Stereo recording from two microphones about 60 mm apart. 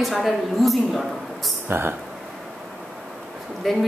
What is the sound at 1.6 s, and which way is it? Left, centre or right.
Speech, right.